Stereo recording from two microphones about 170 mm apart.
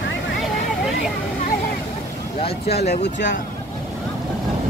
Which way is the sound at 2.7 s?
75° left (ahead or behind).